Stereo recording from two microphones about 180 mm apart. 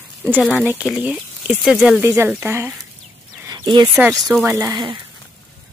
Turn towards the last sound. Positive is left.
turn(degrees=-15)  # may be behind; listen again after turning